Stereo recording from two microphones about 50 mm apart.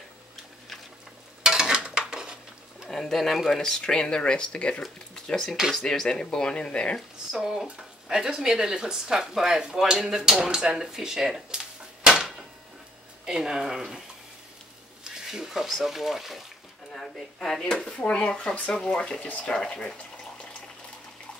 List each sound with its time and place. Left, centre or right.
1.4 s a sound: centre
2.9 s speech: centre; by 4.8 s left
5.1 s dishes: centre
5.8 s speech: centre
7.2 s speech: centre
12.1 s a sound: centre
13.2 s speech: centre
15.0 s speech: centre
16.9 s speech: centre
19.2 s speech: left
19.5 s speech: centre